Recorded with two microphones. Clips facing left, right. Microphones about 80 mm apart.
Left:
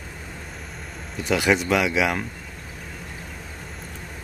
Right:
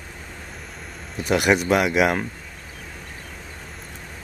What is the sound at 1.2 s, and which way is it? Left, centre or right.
Speech, centre.